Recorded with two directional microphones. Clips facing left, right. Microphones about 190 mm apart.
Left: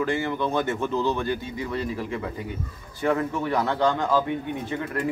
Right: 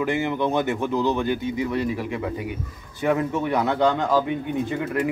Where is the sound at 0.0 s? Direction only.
20° right (ahead or behind).